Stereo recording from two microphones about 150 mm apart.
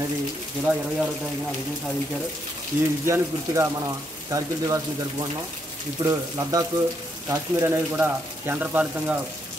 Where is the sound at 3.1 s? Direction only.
20° right (ahead or behind).